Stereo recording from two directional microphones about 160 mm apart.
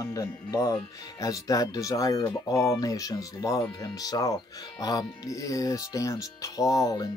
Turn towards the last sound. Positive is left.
turn(degrees=25)  # may be behind; listen again after turning